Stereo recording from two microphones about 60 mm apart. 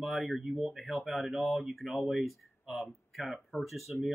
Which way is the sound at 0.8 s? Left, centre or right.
Centre.